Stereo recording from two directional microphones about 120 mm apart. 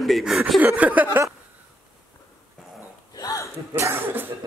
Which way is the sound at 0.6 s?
15° right (ahead or behind).